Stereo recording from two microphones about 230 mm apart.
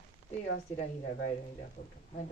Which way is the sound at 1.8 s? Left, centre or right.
Left.